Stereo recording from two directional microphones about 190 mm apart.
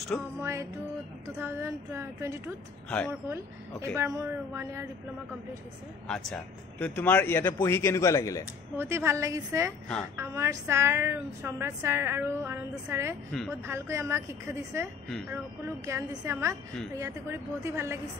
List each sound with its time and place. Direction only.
0.4 s a woman's voice: 15° right (ahead or behind)
6.0 s a man's voice: 5° left (ahead or behind)
8.7 s a woman's voice: 15° right (ahead or behind)